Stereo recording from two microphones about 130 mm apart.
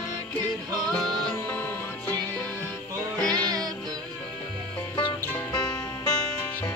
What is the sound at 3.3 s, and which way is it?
Music, 30° right (ahead or behind).